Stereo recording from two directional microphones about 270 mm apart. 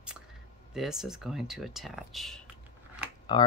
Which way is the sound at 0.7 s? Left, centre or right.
Centre.